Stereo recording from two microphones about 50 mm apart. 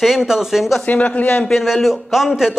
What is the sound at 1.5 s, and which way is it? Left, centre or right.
A man's voice, centre.